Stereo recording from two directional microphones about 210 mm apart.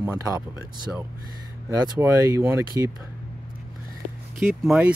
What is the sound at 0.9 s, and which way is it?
Speech, centre (ahead or behind).